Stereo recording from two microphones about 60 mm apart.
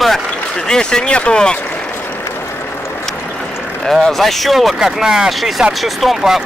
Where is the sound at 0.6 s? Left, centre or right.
Centre.